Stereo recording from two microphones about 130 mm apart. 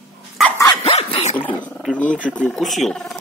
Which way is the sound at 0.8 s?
50° left (ahead or behind).